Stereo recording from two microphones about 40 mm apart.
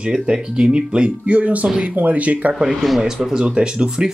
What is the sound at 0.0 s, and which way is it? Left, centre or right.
Speech, right.